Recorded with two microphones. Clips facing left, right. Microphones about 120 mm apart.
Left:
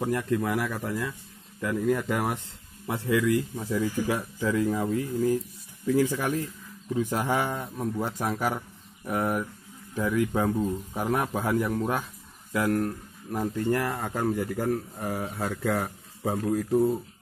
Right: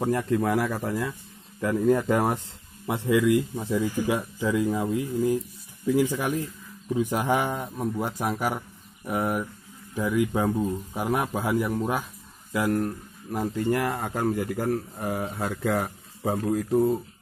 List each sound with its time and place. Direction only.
0.0 s speech: 25° right (ahead or behind)
2.9 s speech: 20° right (ahead or behind)
3.8 s speech: 5° right (ahead or behind)
4.1 s speech: 15° right (ahead or behind)